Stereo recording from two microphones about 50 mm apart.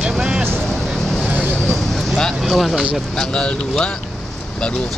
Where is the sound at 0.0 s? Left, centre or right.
Centre.